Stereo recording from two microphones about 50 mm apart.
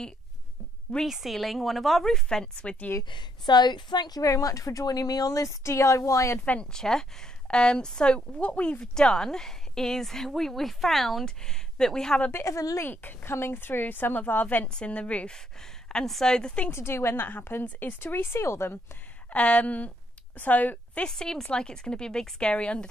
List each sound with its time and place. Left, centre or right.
1.0 s speech: centre; by 2.9 s left
4.2 s a woman's voice: left
6.6 s a woman's voice: centre
8.9 s a woman's voice: centre
12.3 s a woman's voice: left
12.8 s a woman's voice: left
13.3 s a woman's voice: left
14.7 s speech: left
16.1 s a woman's voice: centre
16.7 s a woman's voice: left
19.3 s a woman's voice: left
21.1 s a woman's voice: centre